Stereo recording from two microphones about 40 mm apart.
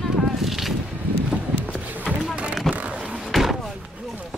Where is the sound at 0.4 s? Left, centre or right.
Centre.